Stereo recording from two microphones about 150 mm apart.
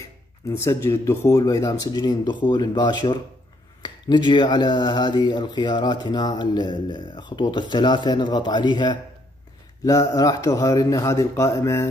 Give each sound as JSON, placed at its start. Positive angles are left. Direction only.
{"t": 0.0, "sound": "speech", "side_deg": 20}